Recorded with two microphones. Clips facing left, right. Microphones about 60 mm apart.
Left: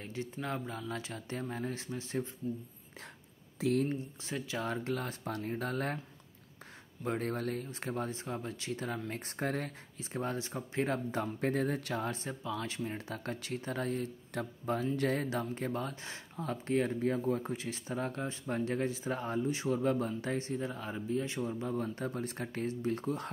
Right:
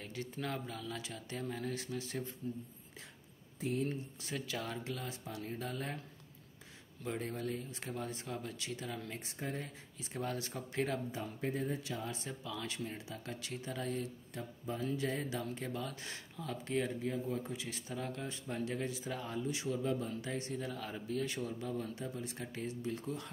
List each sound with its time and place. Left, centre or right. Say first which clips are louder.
0.0 s speech: left 2 dB; left
3.5 s speech: left 7 dB; left
3.9 s speech: left 4 dB; left
4.8 s speech: left 6 dB; left
7.1 s speech: left 4 dB; left
9.9 s speech: left 3 dB; left
11.1 s speech: left 6 dB; left
12.1 s speech: left 5 dB; left
14.3 s speech: left 9 dB; left
15.0 s speech: left 5 dB; left